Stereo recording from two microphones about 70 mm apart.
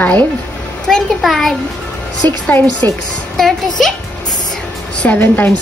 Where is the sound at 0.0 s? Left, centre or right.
Left.